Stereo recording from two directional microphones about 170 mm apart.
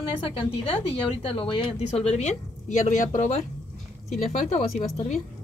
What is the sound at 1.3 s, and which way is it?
A woman's voice, 30° left (ahead or behind).